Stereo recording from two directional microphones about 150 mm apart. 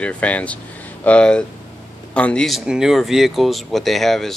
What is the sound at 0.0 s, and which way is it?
Speech, 10° left (ahead or behind).